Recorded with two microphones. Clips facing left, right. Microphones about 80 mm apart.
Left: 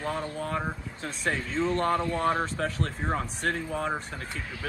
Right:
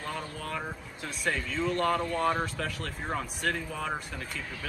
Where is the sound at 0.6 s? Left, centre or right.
Left.